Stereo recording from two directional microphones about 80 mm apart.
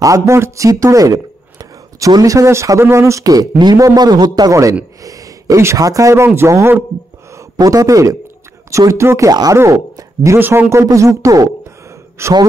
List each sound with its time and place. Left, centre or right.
0.0 s a man's voice: right
5.0 s a sound: right
5.8 s speech: right
7.3 s speech: right
9.3 s speech: right
9.6 s speech: right
10.4 s speech: right